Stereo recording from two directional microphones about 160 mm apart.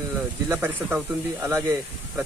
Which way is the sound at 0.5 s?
15° right (ahead or behind).